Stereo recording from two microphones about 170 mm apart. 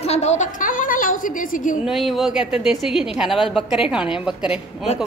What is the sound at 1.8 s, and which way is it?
A woman's voice, centre (ahead or behind).